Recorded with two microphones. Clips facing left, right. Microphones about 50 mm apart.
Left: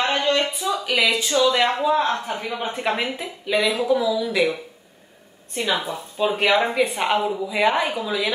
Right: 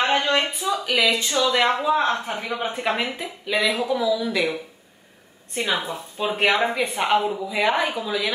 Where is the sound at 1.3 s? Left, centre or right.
Centre.